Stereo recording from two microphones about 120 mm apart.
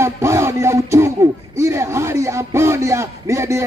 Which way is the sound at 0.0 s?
20° right (ahead or behind).